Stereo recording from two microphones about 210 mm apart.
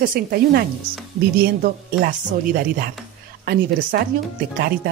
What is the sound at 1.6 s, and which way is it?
Speech, 45° right (ahead or behind).